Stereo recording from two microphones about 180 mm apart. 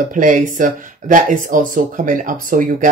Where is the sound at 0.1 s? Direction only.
45° right (ahead or behind).